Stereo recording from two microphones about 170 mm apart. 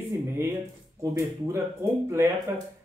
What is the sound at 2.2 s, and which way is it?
Speech, 15° right (ahead or behind).